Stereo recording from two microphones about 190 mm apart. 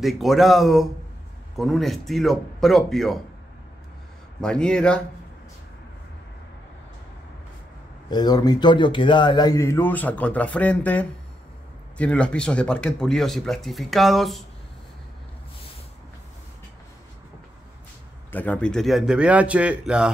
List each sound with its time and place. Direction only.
0.0 s speech: centre (ahead or behind)
4.4 s speech: 5° left (ahead or behind)
8.1 s a man's voice: 20° left (ahead or behind); by 14.4 s centre (ahead or behind)
18.3 s speech: 10° left (ahead or behind)